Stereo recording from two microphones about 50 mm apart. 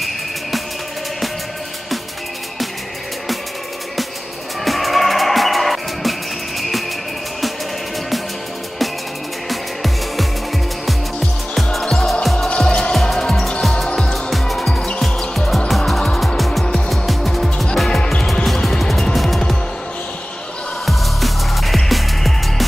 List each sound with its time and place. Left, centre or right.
4.6 s music: centre
9.5 s music: centre
12.4 s music: centre
13.8 s music: centre
15.0 s music: centre
17.8 s music: centre
18.7 s music: centre
20.8 s music: centre